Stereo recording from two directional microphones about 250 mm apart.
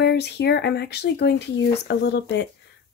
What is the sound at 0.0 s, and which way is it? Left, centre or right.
Speech, left.